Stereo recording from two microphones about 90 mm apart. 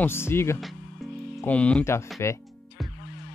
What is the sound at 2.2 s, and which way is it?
Speech, 30° left (ahead or behind).